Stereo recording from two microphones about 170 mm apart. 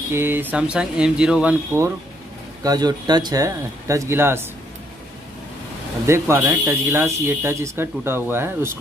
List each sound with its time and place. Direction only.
0.1 s speech: 15° right (ahead or behind)
2.6 s speech: 25° right (ahead or behind)
6.0 s speech: 15° right (ahead or behind)